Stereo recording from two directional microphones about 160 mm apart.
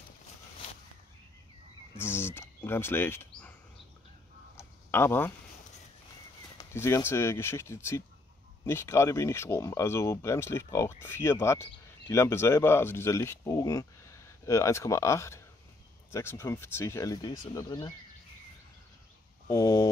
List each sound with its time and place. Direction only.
2.0 s speech: 15° left (ahead or behind)
4.6 s a sound: 15° left (ahead or behind)
6.6 s speech: 15° left (ahead or behind)
19.5 s speech: 20° left (ahead or behind)